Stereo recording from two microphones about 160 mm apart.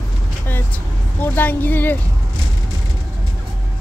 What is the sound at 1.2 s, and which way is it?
Speech, 10° left (ahead or behind).